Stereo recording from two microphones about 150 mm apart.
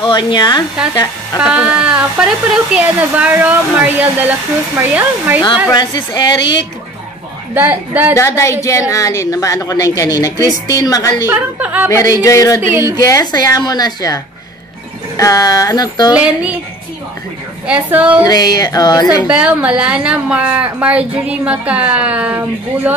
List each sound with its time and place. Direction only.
0.0 s speech: 30° left (ahead or behind)
1.4 s speech: 5° right (ahead or behind)
5.7 s speech: 30° left (ahead or behind)
7.5 s speech: 10° right (ahead or behind)
8.1 s speech: 20° left (ahead or behind)
11.2 s speech: 10° right (ahead or behind)
11.9 s speech: 20° left (ahead or behind)
17.6 s speech: 10° right (ahead or behind)
18.2 s speech: 25° left (ahead or behind)
19.2 s speech: 10° right (ahead or behind)